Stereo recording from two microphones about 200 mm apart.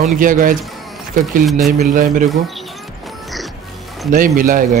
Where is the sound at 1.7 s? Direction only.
40° right (ahead or behind).